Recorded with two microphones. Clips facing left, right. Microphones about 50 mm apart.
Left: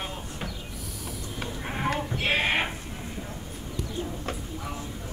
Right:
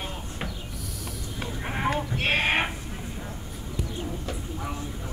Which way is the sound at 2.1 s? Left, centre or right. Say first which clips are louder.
Right 1 dB; right.